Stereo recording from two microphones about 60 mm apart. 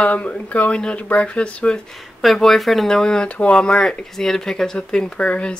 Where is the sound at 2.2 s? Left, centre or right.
Centre.